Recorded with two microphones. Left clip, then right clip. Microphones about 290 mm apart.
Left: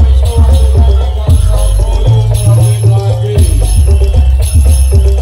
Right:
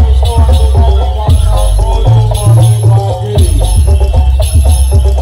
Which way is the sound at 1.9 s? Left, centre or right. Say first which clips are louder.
Right 3 dB; centre.